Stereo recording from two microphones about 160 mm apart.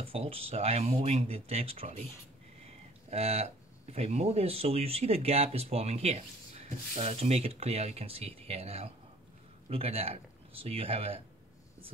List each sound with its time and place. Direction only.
0.0 s speech: 35° right (ahead or behind)